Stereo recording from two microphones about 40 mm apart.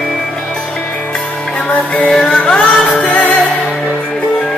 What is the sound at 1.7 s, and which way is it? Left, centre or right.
Music, left.